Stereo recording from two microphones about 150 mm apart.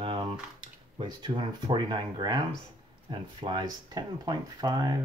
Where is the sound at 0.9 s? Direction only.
30° right (ahead or behind).